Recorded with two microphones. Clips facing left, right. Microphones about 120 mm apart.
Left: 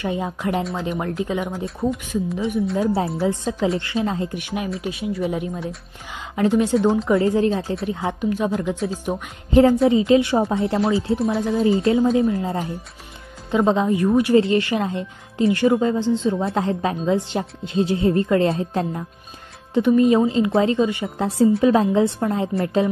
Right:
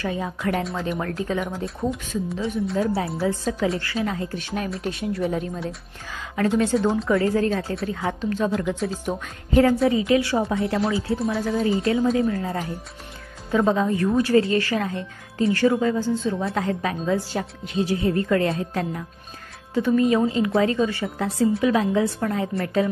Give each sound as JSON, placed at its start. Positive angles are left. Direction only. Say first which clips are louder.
{"t": 0.0, "sound": "a woman's voice", "louder": "left 2 dB", "side_deg": 20}
{"t": 1.8, "sound": "speech", "louder": "left 4 dB", "side_deg": 0}
{"t": 3.2, "sound": "a woman's voice", "louder": "left 2 dB", "side_deg": 20}
{"t": 4.4, "sound": "a woman's voice", "louder": "left 2 dB", "side_deg": 15}
{"t": 4.6, "sound": "a woman's voice", "louder": "left 1 dB", "side_deg": 0}
{"t": 7.1, "sound": "a woman's voice", "louder": "left 3 dB", "side_deg": 25}
{"t": 8.5, "sound": "a woman's voice", "louder": "left 1 dB", "side_deg": 5}
{"t": 9.8, "sound": "a woman's voice", "louder": "left 4 dB", "side_deg": 25}